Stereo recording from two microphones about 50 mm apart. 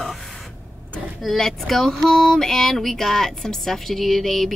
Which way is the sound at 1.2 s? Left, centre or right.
Centre.